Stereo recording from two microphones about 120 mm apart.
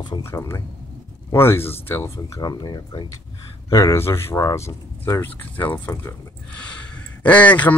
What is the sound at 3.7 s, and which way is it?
Speech, 25° left (ahead or behind).